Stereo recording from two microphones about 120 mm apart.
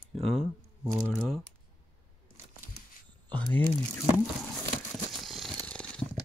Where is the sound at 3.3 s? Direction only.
15° left (ahead or behind).